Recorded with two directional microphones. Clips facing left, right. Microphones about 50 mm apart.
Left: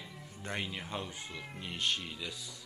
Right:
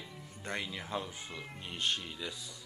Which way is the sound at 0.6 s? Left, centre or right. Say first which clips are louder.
Right 1 dB; centre.